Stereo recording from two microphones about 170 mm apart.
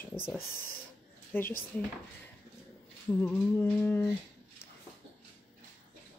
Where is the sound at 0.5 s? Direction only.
60° left (ahead or behind).